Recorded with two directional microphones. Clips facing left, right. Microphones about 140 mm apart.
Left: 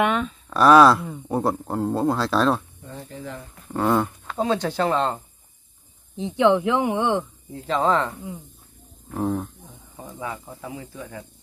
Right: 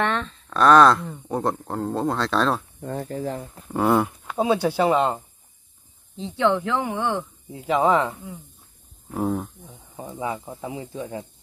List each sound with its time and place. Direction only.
0.0 s speech: 10° left (ahead or behind)
2.8 s speech: 55° right (ahead or behind)
3.6 s speech: 10° right (ahead or behind)
6.1 s speech: 15° left (ahead or behind)
7.5 s speech: 10° right (ahead or behind)
9.9 s speech: 20° right (ahead or behind)